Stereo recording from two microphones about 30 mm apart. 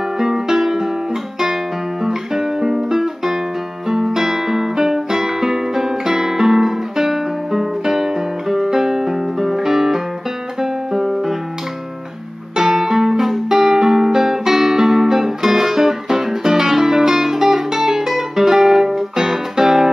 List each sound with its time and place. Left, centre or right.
0.2 s music: centre
2.0 s music: centre
12.5 s music: centre